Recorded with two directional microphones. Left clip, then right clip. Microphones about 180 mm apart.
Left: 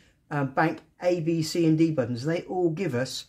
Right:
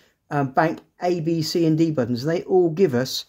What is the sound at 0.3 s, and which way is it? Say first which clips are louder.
Speech: right 5 dB; 55° right (ahead or behind).